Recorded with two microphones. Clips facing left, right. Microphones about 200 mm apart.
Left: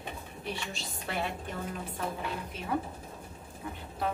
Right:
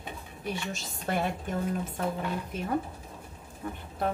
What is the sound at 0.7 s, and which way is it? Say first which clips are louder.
Speech: right 4 dB; 50° right (ahead or behind).